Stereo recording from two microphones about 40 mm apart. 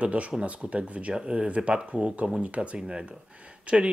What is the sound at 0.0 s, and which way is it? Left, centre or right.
Speech, right.